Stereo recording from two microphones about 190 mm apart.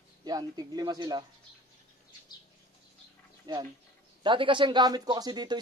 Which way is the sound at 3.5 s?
20° right (ahead or behind).